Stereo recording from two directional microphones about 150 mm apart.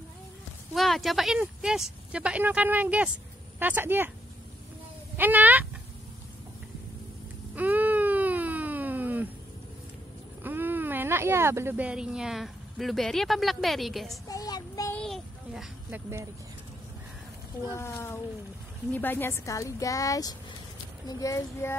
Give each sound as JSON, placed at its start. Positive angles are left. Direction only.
{"t": 0.7, "sound": "speech", "side_deg": 0}
{"t": 5.1, "sound": "speech", "side_deg": -10}
{"t": 7.5, "sound": "baby cry", "side_deg": -10}
{"t": 10.4, "sound": "speech", "side_deg": -10}
{"t": 14.2, "sound": "child singing", "side_deg": 25}
{"t": 15.0, "sound": "a sound", "side_deg": 0}
{"t": 15.9, "sound": "speech", "side_deg": -20}
{"t": 17.6, "sound": "a woman's voice", "side_deg": 20}